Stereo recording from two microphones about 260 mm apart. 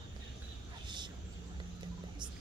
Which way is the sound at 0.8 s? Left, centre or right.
Centre.